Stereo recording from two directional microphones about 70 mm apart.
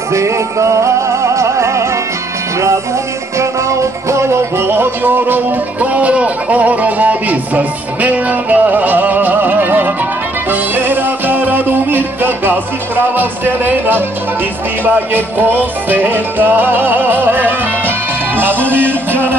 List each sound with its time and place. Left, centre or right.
0.1 s music: right
4.1 s music: right